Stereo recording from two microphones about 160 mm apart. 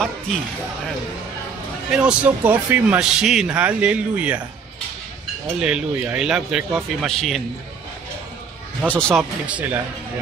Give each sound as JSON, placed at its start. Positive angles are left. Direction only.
{"t": 1.9, "sound": "a man's voice", "side_deg": -5}
{"t": 5.6, "sound": "speech", "side_deg": -5}
{"t": 8.8, "sound": "speech", "side_deg": 5}
{"t": 9.5, "sound": "a man's voice", "side_deg": -10}